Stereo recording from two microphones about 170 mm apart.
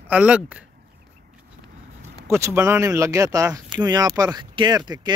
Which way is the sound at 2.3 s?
15° right (ahead or behind).